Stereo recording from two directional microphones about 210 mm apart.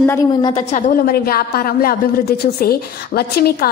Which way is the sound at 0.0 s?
10° left (ahead or behind).